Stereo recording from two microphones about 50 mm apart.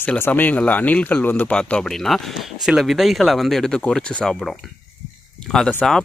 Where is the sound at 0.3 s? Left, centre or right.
Left.